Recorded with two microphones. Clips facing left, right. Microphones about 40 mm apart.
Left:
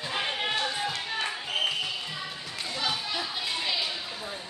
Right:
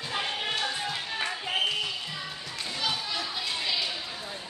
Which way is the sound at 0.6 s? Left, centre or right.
Centre.